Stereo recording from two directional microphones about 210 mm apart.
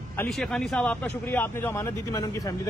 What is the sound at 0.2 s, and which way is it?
Speech, 5° left (ahead or behind).